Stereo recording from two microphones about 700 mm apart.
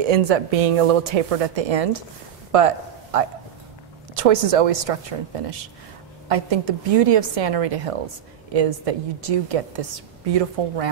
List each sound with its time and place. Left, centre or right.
0.0 s a woman's voice: right
6.2 s a woman's voice: right